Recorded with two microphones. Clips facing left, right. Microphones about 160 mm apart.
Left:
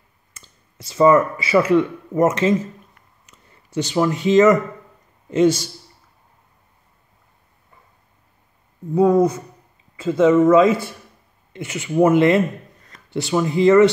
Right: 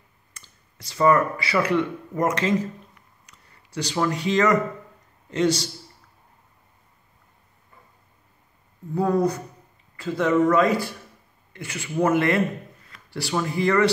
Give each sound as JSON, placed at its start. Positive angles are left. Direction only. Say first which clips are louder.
{"t": 0.3, "sound": "speech", "louder": "left 3 dB", "side_deg": 25}
{"t": 9.1, "sound": "speech", "louder": "left 5 dB", "side_deg": 20}